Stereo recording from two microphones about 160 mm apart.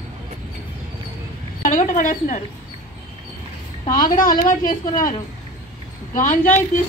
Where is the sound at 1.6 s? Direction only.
55° left (ahead or behind).